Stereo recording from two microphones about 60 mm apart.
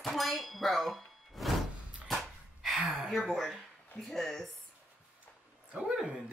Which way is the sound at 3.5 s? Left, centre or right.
Centre.